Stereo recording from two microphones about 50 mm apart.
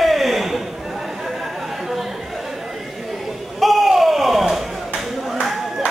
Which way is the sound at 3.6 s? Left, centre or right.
Centre.